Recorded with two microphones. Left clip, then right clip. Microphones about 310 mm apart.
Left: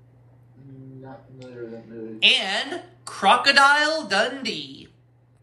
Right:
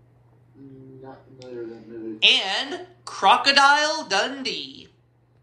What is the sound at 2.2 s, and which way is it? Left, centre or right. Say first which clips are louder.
A woman's voice: even; centre.